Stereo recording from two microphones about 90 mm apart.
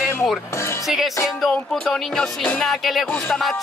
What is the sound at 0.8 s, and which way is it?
Music, centre (ahead or behind).